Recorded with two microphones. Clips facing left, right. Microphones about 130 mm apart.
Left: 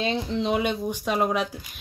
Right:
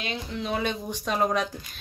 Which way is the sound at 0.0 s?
30° left (ahead or behind).